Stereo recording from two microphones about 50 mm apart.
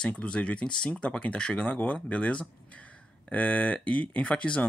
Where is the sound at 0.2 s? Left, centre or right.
Left.